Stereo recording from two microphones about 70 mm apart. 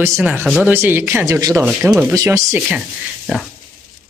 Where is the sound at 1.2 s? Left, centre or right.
Right.